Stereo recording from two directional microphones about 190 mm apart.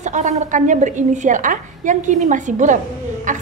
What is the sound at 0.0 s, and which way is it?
A woman's voice, 40° right (ahead or behind).